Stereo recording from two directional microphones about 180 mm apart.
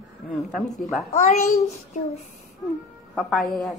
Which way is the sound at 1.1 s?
40° left (ahead or behind).